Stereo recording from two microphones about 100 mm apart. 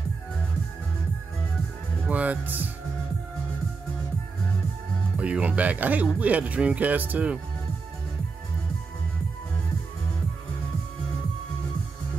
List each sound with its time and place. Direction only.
2.0 s speech: 15° right (ahead or behind)
5.1 s speech: 15° right (ahead or behind)